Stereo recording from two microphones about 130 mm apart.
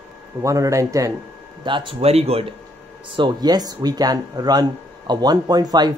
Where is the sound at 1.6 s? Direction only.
40° right (ahead or behind).